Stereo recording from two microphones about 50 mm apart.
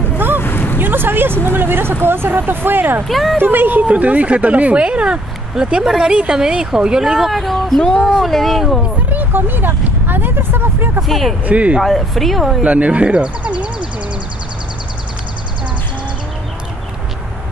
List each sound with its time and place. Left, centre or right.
0.4 s a sound: left
0.7 s speech: right
3.1 s speech: centre
3.3 s speech: right
3.8 s speech: right; by 7.8 s centre
7.8 s speech: centre
8.1 s speech: centre
9.1 s speech: right
11.1 s speech: centre
11.4 s speech: right
11.8 s speech: centre
12.6 s speech: right